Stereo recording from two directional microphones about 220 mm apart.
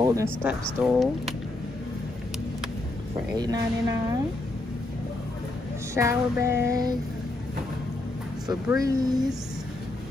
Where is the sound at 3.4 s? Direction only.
15° right (ahead or behind).